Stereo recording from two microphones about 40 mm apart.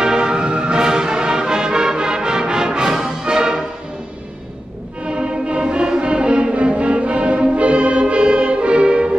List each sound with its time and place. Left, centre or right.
0.0 s music: centre
5.0 s music: right